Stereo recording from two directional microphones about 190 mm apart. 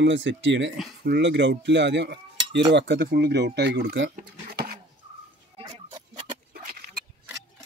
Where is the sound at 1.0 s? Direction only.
60° right (ahead or behind).